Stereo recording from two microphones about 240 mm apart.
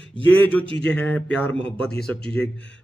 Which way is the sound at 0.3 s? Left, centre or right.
Centre.